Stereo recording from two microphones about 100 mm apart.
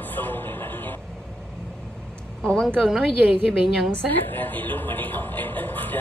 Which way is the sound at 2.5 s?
10° left (ahead or behind).